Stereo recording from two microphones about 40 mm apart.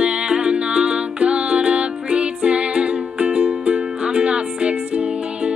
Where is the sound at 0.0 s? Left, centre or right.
Right.